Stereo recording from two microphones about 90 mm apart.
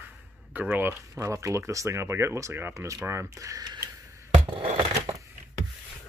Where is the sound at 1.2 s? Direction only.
35° right (ahead or behind).